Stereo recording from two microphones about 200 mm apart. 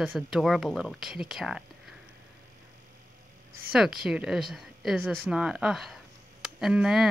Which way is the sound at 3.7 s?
Centre (ahead or behind).